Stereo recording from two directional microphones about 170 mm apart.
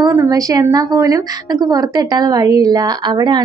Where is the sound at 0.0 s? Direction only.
15° right (ahead or behind).